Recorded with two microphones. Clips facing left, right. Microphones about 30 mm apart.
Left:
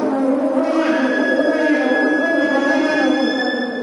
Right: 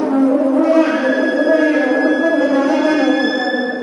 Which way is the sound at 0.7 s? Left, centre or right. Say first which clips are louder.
Right 3 dB; centre.